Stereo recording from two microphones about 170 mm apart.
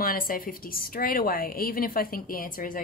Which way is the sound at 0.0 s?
55° left (ahead or behind).